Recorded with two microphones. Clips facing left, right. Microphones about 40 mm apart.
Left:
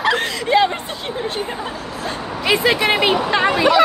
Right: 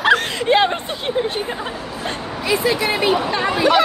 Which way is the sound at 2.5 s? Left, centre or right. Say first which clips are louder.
Left 3 dB; left.